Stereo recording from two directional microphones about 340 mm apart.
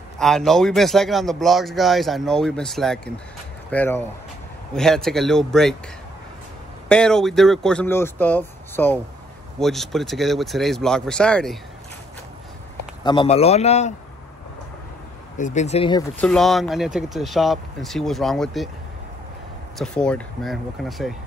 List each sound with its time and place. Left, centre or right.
0.2 s speech: centre
6.9 s speech: centre
13.0 s a man's voice: centre
15.3 s speech: left
16.2 s speech: centre
19.8 s speech: centre